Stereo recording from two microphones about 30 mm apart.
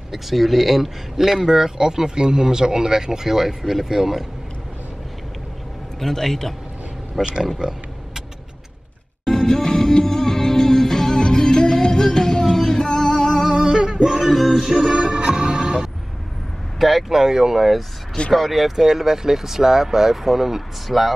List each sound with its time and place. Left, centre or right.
0.1 s speech: centre
5.9 s a man's voice: centre
7.2 s speech: centre
7.6 s speech: right
9.2 s music: centre
13.7 s music: right
14.0 s male singing: centre
14.5 s music: centre
14.9 s music: right
16.7 s vehicle: centre
17.1 s speech: centre
17.6 s speech: centre
18.8 s speech: centre
20.9 s speech: centre